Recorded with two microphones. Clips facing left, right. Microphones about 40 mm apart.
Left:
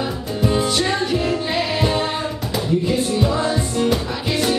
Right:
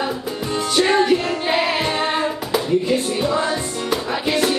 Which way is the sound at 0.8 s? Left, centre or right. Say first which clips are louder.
Right 4 dB; centre.